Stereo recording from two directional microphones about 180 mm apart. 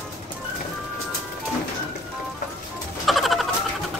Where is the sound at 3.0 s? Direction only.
Centre (ahead or behind).